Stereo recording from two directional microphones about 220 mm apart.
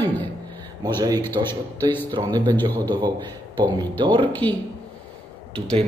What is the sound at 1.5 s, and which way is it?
Speech, 10° left (ahead or behind).